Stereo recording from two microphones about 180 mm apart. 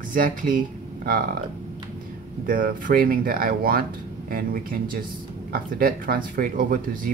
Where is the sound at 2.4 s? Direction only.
50° right (ahead or behind).